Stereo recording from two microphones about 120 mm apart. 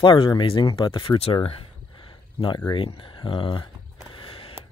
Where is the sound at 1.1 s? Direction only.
55° left (ahead or behind).